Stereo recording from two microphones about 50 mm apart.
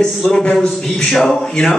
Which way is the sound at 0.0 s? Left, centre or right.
Centre.